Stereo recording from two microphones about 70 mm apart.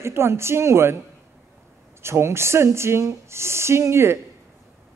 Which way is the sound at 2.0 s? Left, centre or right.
Right.